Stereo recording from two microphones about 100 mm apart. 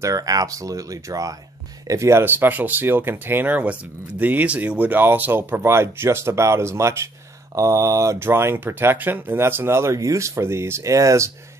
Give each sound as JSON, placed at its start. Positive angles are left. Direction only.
{"t": 0.0, "sound": "speech", "side_deg": -35}